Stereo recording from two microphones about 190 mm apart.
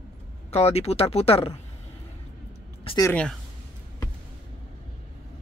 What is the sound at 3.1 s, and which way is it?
Speech, 5° left (ahead or behind).